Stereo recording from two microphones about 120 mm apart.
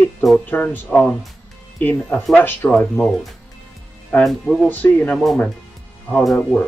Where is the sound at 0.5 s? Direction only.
15° left (ahead or behind).